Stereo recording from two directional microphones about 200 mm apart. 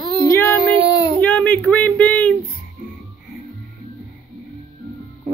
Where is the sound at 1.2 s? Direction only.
5° left (ahead or behind).